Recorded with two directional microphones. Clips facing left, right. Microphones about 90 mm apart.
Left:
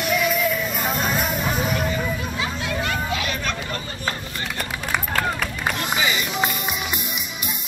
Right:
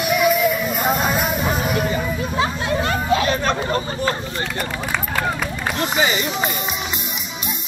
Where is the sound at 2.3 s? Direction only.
35° right (ahead or behind).